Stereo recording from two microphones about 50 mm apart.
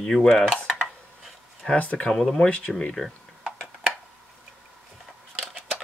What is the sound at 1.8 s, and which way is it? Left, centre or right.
Speech, left.